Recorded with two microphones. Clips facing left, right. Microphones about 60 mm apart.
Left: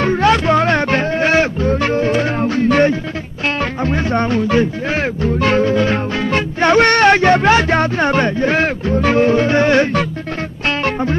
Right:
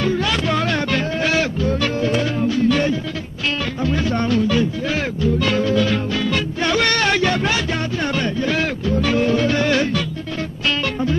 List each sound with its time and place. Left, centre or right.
0.0 s music: left